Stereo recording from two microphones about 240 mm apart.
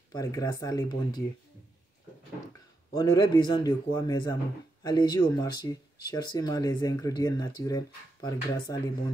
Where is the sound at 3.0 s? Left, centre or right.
Centre.